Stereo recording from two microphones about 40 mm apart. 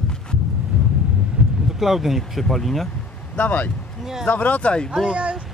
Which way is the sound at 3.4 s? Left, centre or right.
Left.